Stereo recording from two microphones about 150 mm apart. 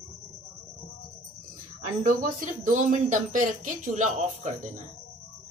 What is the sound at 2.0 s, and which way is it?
Speech, 60° right (ahead or behind).